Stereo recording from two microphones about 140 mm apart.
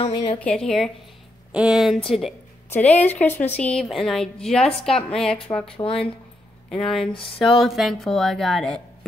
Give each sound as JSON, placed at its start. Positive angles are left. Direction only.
{"t": 0.4, "sound": "a woman's voice", "side_deg": 5}
{"t": 2.7, "sound": "a woman's voice", "side_deg": 10}
{"t": 5.8, "sound": "speech", "side_deg": 40}
{"t": 6.7, "sound": "a woman's voice", "side_deg": 5}